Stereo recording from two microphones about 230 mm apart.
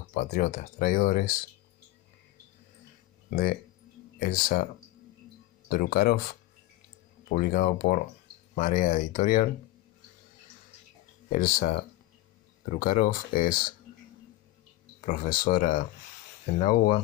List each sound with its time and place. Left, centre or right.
0.1 s speech: left
3.3 s speech: left
5.7 s speech: left
11.2 s speech: left
15.4 s speech: left